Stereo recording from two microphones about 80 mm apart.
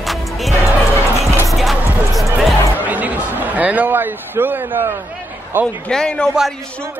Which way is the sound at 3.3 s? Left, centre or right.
Right.